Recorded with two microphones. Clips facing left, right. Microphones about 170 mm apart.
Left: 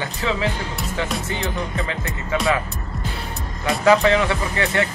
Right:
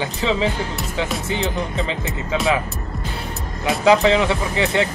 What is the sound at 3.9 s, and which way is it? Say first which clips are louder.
Speech: right 1 dB; 20° right (ahead or behind).